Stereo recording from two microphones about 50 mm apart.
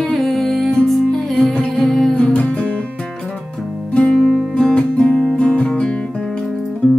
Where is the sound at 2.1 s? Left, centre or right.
Left.